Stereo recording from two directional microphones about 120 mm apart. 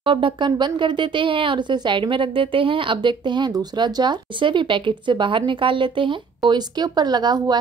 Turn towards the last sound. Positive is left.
turn(degrees=-35)  # may be behind; listen again after turning